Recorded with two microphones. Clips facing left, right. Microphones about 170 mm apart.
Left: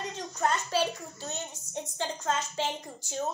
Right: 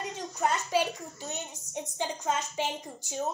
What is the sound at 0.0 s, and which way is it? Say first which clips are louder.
A woman's voice: even; 10° right (ahead or behind).